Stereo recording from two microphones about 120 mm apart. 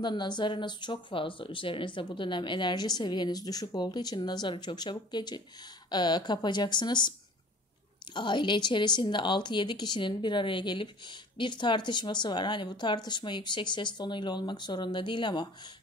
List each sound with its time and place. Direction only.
0.0 s speech: 40° left (ahead or behind)